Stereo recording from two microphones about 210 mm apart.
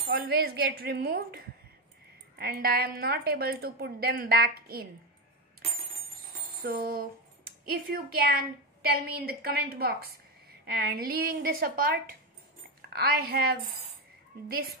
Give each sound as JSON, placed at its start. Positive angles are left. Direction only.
{"t": 0.1, "sound": "a woman's voice", "side_deg": -50}
{"t": 6.6, "sound": "a woman's voice", "side_deg": -50}